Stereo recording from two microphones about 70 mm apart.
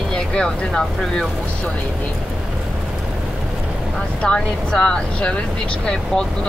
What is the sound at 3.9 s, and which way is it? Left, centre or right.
Speech, centre.